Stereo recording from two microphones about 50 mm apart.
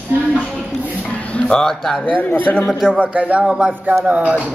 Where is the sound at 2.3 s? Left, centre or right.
Left.